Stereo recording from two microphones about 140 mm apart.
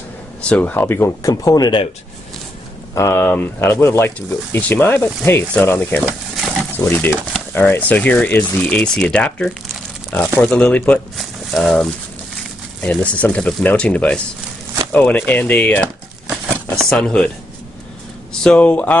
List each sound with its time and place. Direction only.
0.4 s speech: 10° left (ahead or behind); by 1.9 s 30° left (ahead or behind)
2.9 s speech: 20° left (ahead or behind)
6.3 s a sound: 5° right (ahead or behind)
6.6 s speech: 10° left (ahead or behind)
18.4 s speech: 10° left (ahead or behind)